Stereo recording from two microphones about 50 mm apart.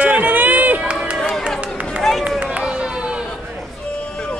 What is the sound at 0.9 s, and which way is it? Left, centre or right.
Run, right.